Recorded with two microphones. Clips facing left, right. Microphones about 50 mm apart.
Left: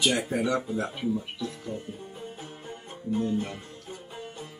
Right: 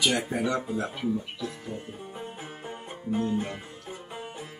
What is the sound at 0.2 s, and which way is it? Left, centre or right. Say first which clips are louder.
Speech: left 1 dB; centre.